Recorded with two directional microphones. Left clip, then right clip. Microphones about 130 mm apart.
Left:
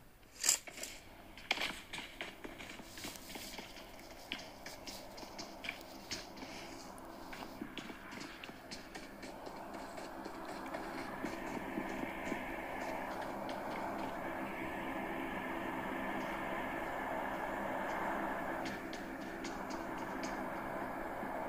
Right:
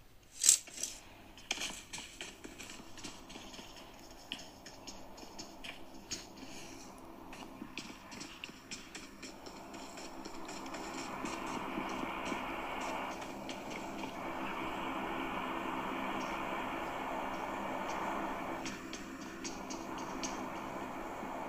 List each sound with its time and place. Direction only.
1.5 s a sound: 25° left (ahead or behind)
9.8 s vehicle: 25° left (ahead or behind)
19.4 s music: 25° left (ahead or behind)
20.4 s vehicle: 20° left (ahead or behind)